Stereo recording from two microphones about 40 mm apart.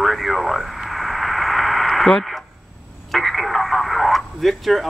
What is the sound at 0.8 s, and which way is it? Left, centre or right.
Radio, centre.